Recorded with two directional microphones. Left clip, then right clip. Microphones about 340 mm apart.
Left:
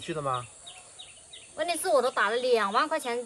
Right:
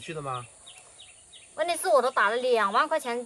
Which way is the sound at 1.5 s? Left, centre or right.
Centre.